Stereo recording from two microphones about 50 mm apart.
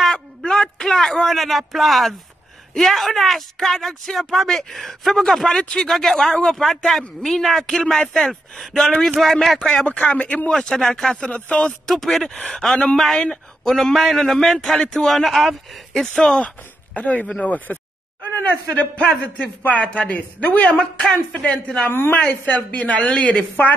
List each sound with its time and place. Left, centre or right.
0.0 s a sound: centre
1.3 s speech: centre
5.6 s a man's voice: centre
5.9 s speech: centre
9.8 s a man's voice: left
10.5 s a man's voice: centre
11.9 s speech: centre
12.4 s a man's voice: centre
13.7 s speech: centre
16.3 s a man's voice: left